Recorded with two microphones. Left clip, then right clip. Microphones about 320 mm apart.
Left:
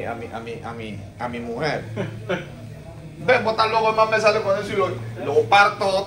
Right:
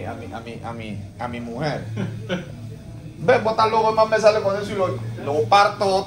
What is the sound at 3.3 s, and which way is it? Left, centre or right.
Speech, right.